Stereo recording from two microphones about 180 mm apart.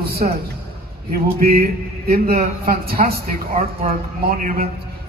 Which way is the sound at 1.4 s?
55° right (ahead or behind).